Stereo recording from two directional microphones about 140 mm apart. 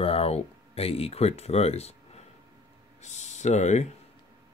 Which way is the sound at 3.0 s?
55° left (ahead or behind).